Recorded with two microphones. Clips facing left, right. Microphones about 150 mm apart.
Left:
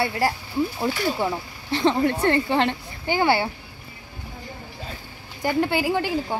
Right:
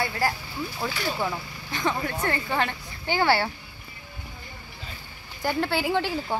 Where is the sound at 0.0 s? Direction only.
30° left (ahead or behind).